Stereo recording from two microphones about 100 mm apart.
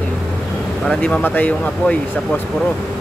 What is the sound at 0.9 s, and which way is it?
Speech, 10° left (ahead or behind).